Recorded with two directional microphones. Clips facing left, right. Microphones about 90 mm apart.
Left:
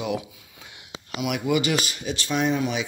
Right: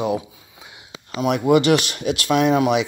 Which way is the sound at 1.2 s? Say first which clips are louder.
Right 7 dB; 45° right (ahead or behind).